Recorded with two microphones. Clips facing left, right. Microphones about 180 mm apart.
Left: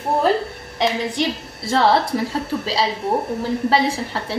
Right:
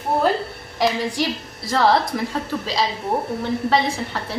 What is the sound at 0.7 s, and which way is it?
A woman's voice, 25° left (ahead or behind).